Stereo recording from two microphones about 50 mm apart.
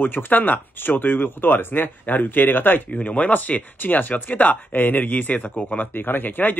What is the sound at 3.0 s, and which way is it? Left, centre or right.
Speech, left.